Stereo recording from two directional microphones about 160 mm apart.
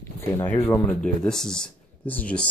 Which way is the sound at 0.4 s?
15° left (ahead or behind).